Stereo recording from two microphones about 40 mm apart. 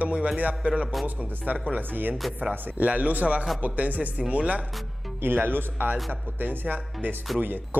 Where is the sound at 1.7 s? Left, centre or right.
Right.